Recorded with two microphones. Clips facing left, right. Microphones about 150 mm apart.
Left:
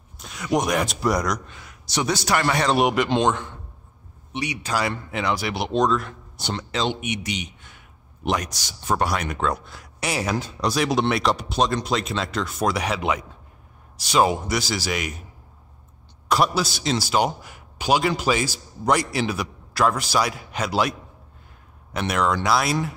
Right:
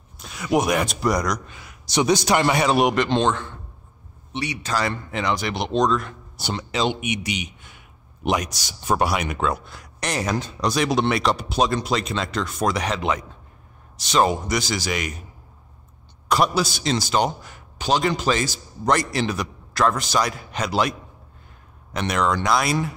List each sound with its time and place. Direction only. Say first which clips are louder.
0.2 s speech: right 2 dB; 5° right (ahead or behind)
1.9 s a man's voice: right 4 dB; 20° right (ahead or behind)
2.8 s a man's voice: even; 5° left (ahead or behind)
16.3 s a man's voice: right 1 dB; centre (ahead or behind)
21.9 s speech: even; 5° left (ahead or behind)